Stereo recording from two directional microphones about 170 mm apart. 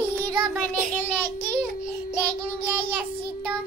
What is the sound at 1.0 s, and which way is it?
Child singing, 15° left (ahead or behind).